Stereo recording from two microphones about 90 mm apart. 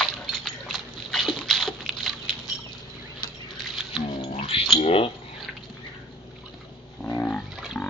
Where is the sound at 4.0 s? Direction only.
80° left.